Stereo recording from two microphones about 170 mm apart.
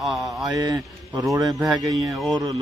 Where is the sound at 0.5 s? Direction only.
25° right (ahead or behind).